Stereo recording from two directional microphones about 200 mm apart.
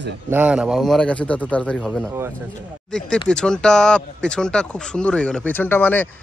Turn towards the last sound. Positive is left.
turn(degrees=10)  # may be behind; listen again after turning